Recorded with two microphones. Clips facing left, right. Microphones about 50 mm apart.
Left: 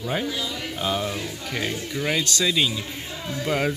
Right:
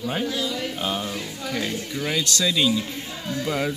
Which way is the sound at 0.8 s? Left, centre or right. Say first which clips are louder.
Left 5 dB; centre.